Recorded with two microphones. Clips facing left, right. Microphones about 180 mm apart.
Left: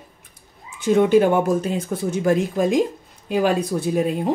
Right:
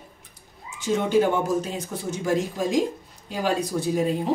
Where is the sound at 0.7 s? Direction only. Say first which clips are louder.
Left 6 dB; 55° left (ahead or behind).